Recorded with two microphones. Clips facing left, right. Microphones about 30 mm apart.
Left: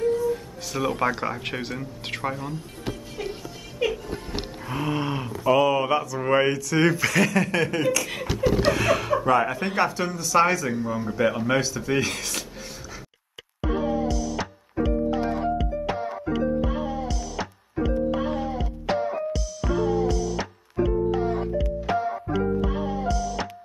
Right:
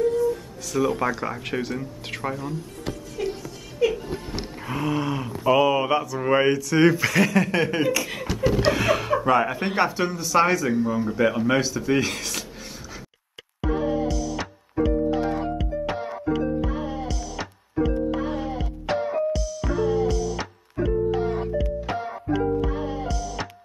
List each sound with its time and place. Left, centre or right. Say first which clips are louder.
0.0 s music: right 1 dB; left
0.7 s speech: right 1 dB; centre
3.2 s music: right 5 dB; centre
5.5 s speech: right 1 dB; centre
8.0 s speech: even; centre
13.6 s music: right 1 dB; centre